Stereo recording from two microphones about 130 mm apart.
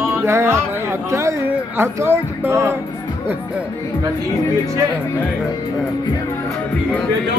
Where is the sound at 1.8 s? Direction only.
20° right (ahead or behind).